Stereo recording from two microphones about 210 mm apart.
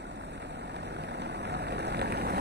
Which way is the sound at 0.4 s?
55° right (ahead or behind).